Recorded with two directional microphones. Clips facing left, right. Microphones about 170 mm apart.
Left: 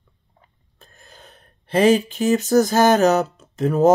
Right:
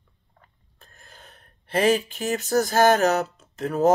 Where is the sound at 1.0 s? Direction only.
20° left (ahead or behind).